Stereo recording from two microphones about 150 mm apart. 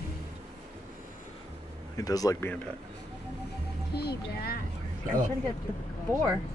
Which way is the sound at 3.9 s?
90° left.